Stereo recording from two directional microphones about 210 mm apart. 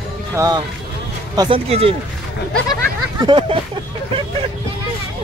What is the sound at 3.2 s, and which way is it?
Speech, 25° right (ahead or behind).